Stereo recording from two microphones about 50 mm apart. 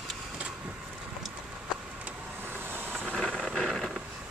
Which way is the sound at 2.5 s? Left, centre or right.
Right.